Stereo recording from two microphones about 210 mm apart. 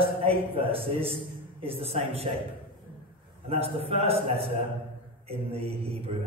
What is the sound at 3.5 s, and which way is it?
A man's voice, 30° right (ahead or behind).